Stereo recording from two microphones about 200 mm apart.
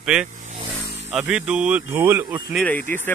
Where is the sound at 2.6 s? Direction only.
10° left (ahead or behind).